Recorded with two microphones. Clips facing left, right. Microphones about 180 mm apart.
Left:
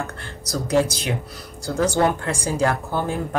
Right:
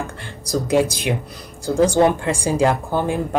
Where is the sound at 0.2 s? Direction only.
15° right (ahead or behind).